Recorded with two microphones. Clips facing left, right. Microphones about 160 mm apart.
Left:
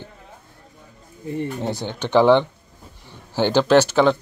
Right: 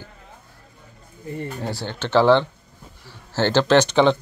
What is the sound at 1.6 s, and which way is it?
Speech, 20° left (ahead or behind).